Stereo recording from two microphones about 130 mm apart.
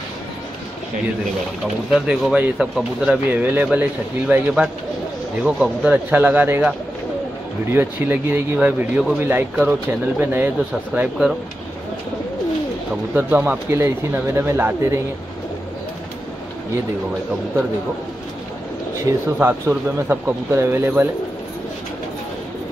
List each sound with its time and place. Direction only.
1.6 s speech: 5° right (ahead or behind)
7.7 s speech: 15° right (ahead or behind)
11.0 s speech: 5° right (ahead or behind)
13.1 s speech: 10° right (ahead or behind)
19.3 s speech: 15° right (ahead or behind)